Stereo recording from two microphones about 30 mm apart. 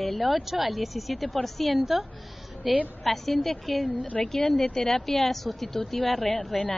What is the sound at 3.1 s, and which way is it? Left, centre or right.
Speech, centre.